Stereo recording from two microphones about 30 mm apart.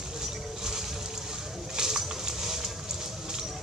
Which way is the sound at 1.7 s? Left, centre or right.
Centre.